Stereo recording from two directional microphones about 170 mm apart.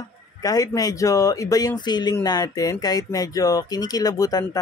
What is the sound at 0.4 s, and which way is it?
Speech, 20° left (ahead or behind).